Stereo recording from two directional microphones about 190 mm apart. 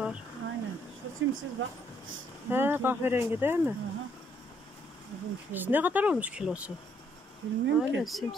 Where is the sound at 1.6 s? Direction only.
90° right.